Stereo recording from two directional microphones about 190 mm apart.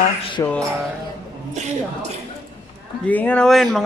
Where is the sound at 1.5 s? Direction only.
35° right (ahead or behind).